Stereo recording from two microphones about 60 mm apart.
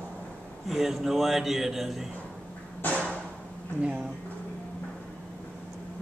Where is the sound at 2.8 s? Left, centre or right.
Left.